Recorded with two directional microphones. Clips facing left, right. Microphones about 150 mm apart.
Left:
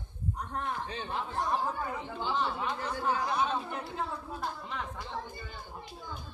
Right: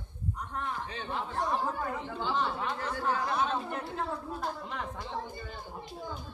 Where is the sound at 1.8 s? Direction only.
5° left (ahead or behind).